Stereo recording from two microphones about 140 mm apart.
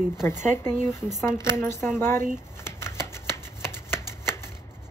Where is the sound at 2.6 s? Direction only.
20° left (ahead or behind).